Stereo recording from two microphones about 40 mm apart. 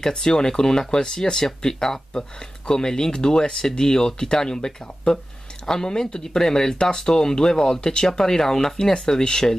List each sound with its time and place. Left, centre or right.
0.0 s speech: centre